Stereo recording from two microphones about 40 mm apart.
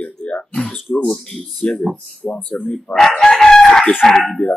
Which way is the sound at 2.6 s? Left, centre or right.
Left.